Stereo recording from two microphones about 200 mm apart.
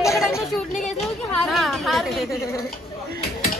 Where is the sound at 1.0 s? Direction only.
Centre (ahead or behind).